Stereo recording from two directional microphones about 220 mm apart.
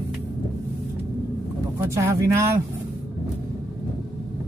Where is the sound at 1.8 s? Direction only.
15° right (ahead or behind).